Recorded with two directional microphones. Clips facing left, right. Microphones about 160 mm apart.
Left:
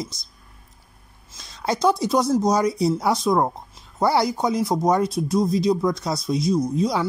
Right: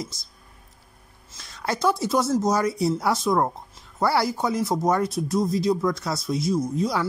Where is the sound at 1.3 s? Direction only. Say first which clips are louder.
Left 3 dB; 20° left (ahead or behind).